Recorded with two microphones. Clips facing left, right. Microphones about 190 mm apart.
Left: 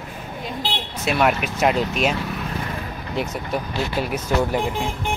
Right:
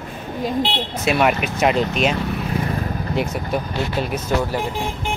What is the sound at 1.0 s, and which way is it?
Speech, centre (ahead or behind).